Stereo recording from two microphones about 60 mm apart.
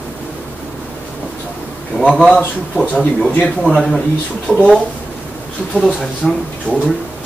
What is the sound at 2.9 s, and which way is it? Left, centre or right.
Speech, centre.